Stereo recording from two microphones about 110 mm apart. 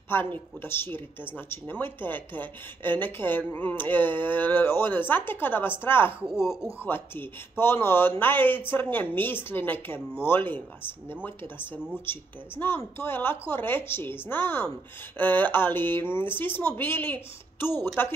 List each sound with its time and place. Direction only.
0.1 s speech: 20° left (ahead or behind)